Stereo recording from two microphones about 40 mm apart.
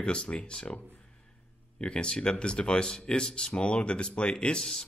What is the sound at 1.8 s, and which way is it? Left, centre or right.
Speech, left.